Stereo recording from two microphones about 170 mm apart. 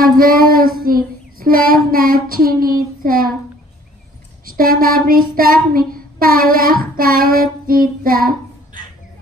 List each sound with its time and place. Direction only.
0.0 s child singing: 60° right (ahead or behind)
4.5 s child singing: 55° right (ahead or behind)